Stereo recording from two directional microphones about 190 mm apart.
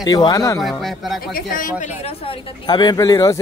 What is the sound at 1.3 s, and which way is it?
Speech, 45° left (ahead or behind).